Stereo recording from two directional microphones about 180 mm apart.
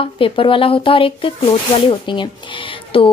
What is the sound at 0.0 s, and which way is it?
A woman's voice, 30° left (ahead or behind).